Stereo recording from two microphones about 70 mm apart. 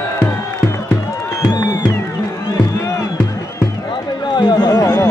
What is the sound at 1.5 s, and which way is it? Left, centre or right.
Music, left.